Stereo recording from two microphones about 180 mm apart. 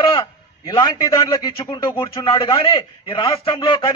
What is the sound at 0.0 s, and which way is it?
Speech, 25° left (ahead or behind).